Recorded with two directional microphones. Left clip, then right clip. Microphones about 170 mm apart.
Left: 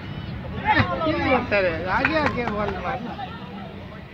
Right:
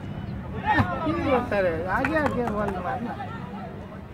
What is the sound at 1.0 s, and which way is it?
Speech, 90° right.